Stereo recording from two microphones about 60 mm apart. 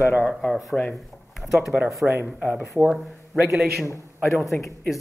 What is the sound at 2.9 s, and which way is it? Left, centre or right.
Speech, centre.